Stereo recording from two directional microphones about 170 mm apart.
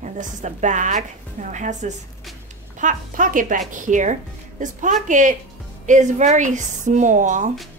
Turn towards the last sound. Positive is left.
turn(degrees=-45)  # may be behind; listen again after turning